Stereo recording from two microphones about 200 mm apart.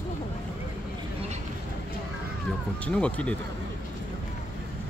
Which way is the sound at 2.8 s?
5° left (ahead or behind).